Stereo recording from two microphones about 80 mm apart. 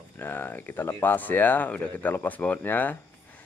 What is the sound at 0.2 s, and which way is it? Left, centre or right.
Speech, left.